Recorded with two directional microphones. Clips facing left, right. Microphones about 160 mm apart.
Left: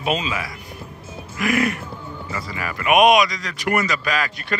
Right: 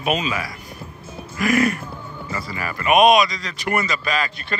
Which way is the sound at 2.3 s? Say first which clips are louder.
Right 1 dB; 15° left (ahead or behind).